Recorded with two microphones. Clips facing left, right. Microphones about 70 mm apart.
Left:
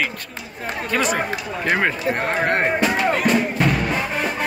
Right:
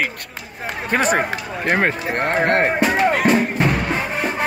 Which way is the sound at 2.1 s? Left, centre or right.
Right.